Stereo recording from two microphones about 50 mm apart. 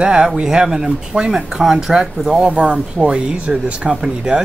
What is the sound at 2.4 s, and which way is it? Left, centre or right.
Speech, centre.